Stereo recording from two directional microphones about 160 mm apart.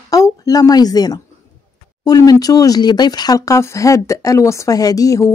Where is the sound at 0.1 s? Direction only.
20° left (ahead or behind).